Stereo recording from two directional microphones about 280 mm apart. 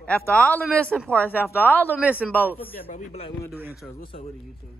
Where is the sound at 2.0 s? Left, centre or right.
Centre.